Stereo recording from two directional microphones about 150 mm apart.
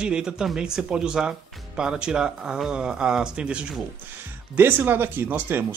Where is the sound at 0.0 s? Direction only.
5° right (ahead or behind).